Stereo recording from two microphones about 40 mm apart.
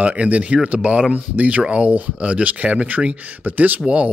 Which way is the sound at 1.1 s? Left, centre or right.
Right.